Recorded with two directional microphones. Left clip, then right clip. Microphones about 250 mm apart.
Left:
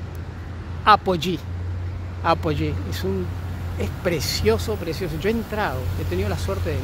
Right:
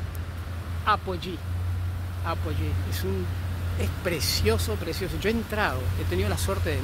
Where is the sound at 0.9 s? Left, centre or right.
Left.